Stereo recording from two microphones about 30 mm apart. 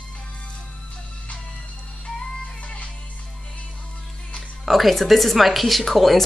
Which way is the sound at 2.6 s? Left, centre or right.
Left.